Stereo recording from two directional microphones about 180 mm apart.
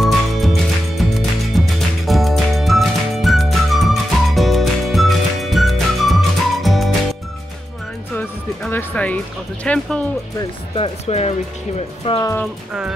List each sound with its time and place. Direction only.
0.0 s music: centre (ahead or behind)
8.2 s music: 10° left (ahead or behind)
9.7 s speech: 5° left (ahead or behind)
10.8 s speech: 35° left (ahead or behind)